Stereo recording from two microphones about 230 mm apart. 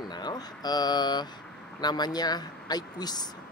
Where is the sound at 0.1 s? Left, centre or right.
Centre.